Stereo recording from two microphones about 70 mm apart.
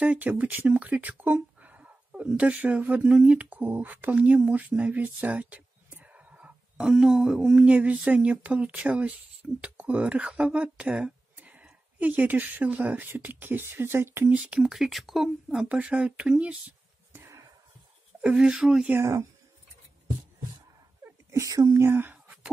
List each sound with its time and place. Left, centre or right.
0.0 s speech: centre
6.8 s speech: centre; by 14.3 s right
14.3 s speech: centre
14.7 s speech: centre
15.7 s speech: centre
18.2 s speech: centre
18.9 s speech: right
21.3 s speech: right
21.8 s speech: right
22.1 s a sound: centre